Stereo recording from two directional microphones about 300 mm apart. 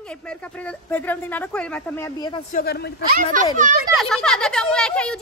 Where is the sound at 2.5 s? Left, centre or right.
Left.